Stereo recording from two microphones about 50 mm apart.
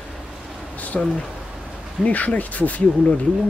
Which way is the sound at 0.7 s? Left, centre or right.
Left.